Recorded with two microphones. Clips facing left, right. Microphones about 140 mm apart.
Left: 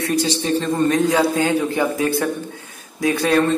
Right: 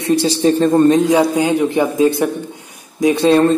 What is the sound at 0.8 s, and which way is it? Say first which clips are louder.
Speech: right 5 dB; 20° right (ahead or behind).